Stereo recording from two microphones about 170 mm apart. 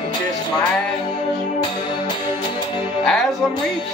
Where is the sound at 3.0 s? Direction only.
5° left (ahead or behind).